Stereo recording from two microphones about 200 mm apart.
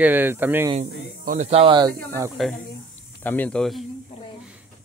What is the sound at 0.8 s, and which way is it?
Speech, 35° right (ahead or behind).